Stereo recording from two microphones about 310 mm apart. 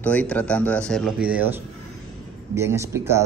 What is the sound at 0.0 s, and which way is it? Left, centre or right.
A man's voice, centre.